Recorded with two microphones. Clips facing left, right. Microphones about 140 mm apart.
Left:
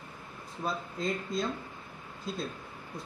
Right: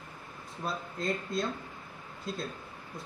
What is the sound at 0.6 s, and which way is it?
Speech, centre (ahead or behind).